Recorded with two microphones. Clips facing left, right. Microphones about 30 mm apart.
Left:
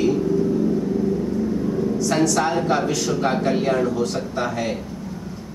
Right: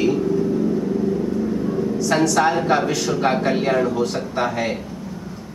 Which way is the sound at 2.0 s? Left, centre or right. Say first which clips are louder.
Right 3 dB; centre.